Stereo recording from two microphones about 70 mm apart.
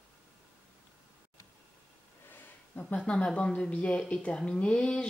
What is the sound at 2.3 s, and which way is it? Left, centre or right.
Speech, left.